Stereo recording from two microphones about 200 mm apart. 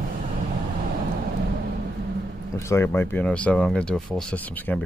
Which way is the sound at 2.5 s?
15° left (ahead or behind).